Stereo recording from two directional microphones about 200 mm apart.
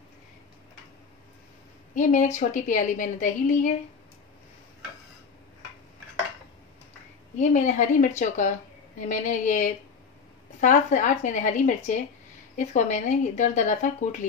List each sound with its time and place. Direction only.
2.0 s a woman's voice: 40° left (ahead or behind)
7.3 s a woman's voice: 35° left (ahead or behind)